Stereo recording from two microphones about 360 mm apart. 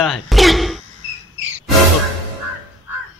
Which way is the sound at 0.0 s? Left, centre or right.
Centre.